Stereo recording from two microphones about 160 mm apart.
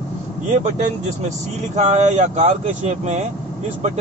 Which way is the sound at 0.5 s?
50° right (ahead or behind).